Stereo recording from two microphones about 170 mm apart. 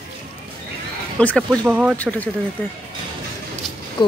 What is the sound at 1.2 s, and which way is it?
Speech, 5° left (ahead or behind).